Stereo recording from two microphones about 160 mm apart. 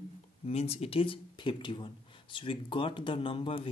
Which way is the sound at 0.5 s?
40° left (ahead or behind).